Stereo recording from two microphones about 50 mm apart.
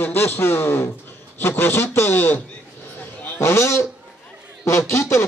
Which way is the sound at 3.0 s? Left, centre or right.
Left.